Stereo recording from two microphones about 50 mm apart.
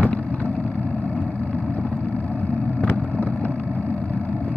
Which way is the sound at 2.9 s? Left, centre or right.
Left.